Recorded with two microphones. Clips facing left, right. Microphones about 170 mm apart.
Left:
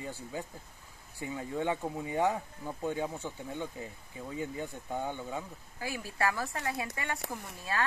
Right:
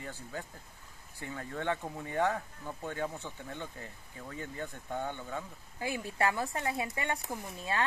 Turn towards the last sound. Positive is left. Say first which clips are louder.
# right 1 dB
turn(degrees=-20)  # may be behind; listen again after turning